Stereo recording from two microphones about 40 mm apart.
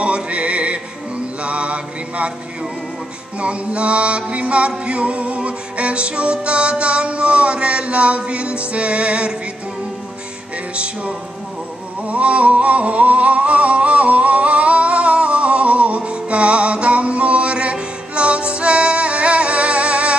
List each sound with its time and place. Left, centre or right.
0.0 s music: right
1.4 s mantra: right
3.3 s music: right
12.1 s music: right